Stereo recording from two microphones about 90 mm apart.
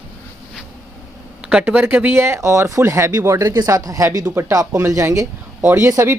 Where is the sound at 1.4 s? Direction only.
10° right (ahead or behind); by 5.3 s 35° right (ahead or behind).